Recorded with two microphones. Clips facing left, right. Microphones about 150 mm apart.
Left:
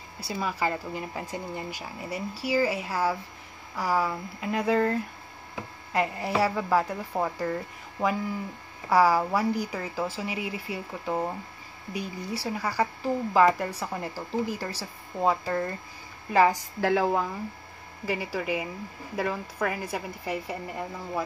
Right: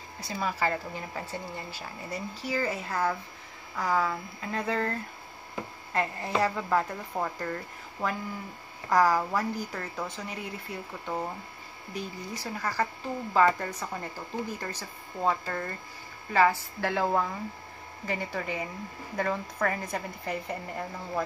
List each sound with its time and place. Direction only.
0.2 s speech: 10° left (ahead or behind)
5.9 s speech: 15° left (ahead or behind)